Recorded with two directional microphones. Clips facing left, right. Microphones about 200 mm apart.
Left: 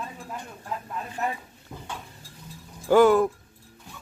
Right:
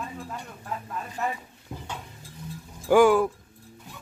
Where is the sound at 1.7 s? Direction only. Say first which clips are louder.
Right 2 dB; 15° right (ahead or behind).